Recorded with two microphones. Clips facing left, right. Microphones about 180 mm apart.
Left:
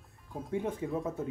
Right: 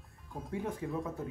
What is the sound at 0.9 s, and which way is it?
Speech, centre (ahead or behind).